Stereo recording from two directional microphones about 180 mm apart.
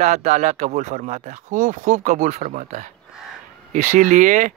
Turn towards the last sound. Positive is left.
turn(degrees=-45)  # may be behind; listen again after turning